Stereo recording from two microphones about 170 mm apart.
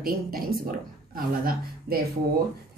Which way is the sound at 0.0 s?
60° right (ahead or behind).